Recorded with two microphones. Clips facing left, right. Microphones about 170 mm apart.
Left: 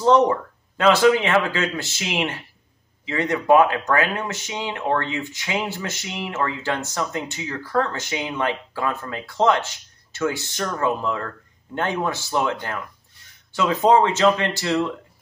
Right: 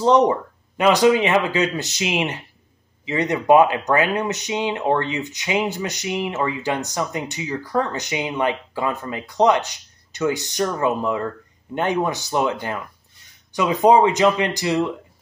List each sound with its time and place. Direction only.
0.0 s speech: 20° right (ahead or behind)